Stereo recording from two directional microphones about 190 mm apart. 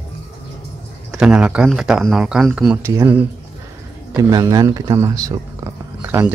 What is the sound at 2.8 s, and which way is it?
Speech, 15° right (ahead or behind).